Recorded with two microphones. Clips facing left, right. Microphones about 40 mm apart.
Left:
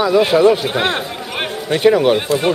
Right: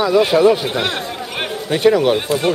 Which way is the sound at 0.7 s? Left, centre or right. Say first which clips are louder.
Left 3 dB; centre.